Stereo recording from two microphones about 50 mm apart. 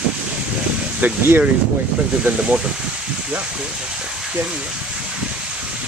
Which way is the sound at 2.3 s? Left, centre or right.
Right.